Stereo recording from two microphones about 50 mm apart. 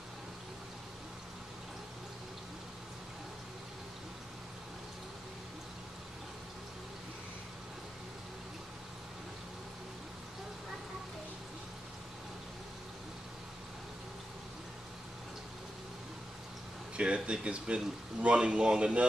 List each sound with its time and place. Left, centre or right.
16.9 s speech: right